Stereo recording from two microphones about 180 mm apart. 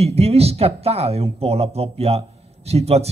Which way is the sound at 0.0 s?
35° right (ahead or behind).